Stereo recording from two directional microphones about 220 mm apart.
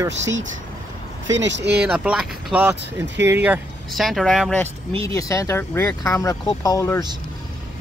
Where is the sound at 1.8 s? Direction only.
5° right (ahead or behind).